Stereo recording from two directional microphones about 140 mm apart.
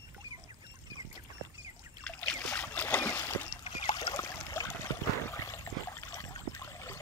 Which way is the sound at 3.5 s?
35° left (ahead or behind).